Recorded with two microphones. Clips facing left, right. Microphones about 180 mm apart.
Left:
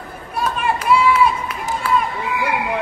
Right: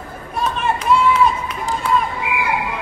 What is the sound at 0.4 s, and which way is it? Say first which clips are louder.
Run: even; 5° left (ahead or behind).